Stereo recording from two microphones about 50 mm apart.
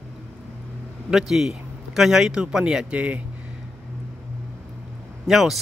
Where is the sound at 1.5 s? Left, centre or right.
Centre.